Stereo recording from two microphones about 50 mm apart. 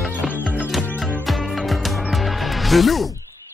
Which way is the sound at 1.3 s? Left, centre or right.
Centre.